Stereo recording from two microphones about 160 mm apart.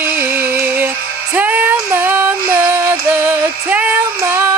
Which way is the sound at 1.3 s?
10° right (ahead or behind).